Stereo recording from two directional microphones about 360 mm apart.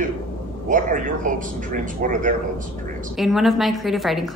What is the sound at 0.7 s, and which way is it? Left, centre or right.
Speech, right.